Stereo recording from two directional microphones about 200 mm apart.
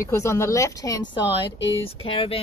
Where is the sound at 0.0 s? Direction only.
15° left (ahead or behind).